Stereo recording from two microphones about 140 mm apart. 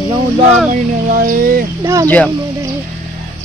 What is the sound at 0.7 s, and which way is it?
Speech, 75° right (ahead or behind).